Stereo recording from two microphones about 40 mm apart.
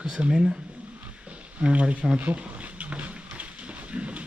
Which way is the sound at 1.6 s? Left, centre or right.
Right.